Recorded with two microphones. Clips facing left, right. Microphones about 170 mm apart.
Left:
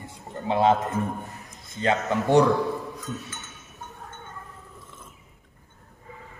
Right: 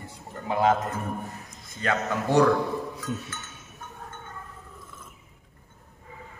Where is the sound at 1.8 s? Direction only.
20° left (ahead or behind).